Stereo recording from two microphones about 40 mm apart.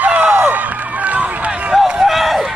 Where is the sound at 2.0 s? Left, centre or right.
Centre.